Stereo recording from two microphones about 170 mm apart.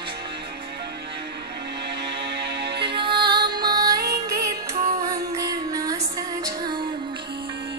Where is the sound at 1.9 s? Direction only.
80° right.